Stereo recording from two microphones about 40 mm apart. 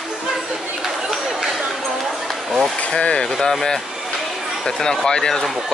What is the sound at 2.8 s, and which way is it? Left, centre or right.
Speech, left.